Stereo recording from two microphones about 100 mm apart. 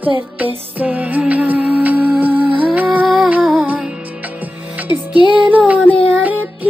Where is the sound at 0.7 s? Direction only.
15° right (ahead or behind).